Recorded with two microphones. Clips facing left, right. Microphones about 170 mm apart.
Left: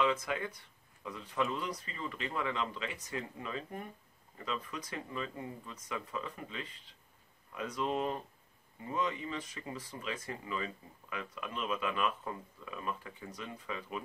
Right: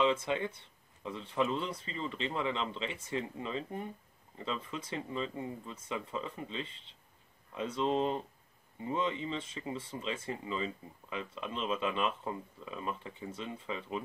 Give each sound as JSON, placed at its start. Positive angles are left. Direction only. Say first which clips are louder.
{"t": 0.0, "sound": "speech", "louder": "right 2 dB", "side_deg": -25}